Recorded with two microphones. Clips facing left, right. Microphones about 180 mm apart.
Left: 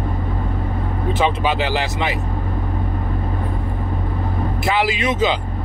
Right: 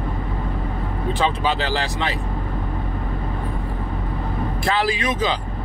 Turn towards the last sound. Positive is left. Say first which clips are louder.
# left 3 dB
turn(degrees=25)  # may be behind; listen again after turning